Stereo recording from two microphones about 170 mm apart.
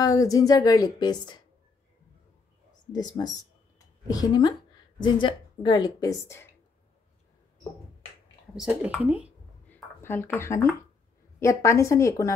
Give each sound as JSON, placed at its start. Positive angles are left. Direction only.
{"t": 0.0, "sound": "a woman's voice", "side_deg": 20}
{"t": 2.9, "sound": "a woman's voice", "side_deg": 25}
{"t": 8.5, "sound": "speech", "side_deg": -5}
{"t": 9.7, "sound": "a sound", "side_deg": 15}
{"t": 11.3, "sound": "a woman's voice", "side_deg": 15}